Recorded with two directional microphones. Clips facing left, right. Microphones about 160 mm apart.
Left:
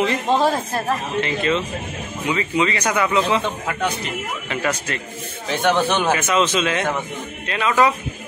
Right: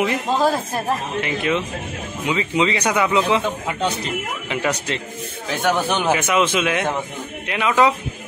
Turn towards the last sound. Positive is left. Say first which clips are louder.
# right 1 dB
turn(degrees=-15)  # may be behind; listen again after turning